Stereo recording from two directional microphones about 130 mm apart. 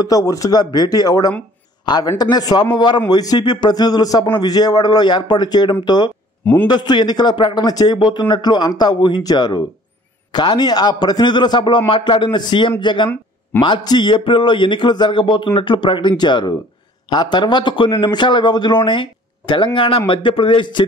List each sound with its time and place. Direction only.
0.0 s a man's voice: 30° left (ahead or behind)
6.4 s a man's voice: 10° left (ahead or behind)
6.7 s a man's voice: 35° left (ahead or behind)